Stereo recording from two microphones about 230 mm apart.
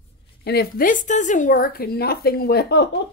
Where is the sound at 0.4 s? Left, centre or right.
Left.